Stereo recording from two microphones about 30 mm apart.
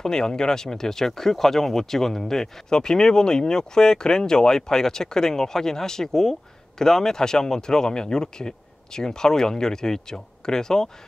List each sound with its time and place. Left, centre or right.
0.0 s speech: left
2.8 s speech: left